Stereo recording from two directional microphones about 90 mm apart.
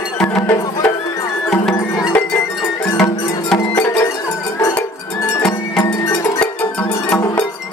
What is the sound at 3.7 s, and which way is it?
Music, 25° left (ahead or behind).